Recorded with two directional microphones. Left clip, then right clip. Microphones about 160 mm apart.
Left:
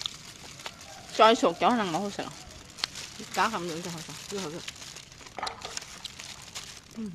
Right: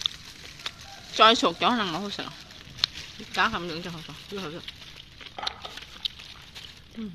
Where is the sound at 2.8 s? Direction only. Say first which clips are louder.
Right 6 dB; 20° left (ahead or behind).